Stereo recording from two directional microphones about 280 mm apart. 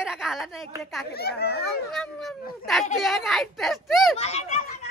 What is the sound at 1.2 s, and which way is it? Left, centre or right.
Speech, left.